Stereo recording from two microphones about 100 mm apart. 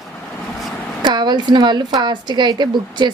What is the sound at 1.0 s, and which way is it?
A woman's voice, 45° right (ahead or behind).